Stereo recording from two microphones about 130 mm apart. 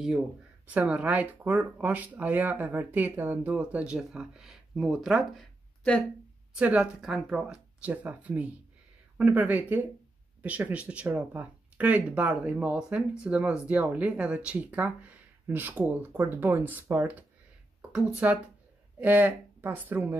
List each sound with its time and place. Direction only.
0.7 s speech: 10° right (ahead or behind)
6.5 s speech: 10° right (ahead or behind)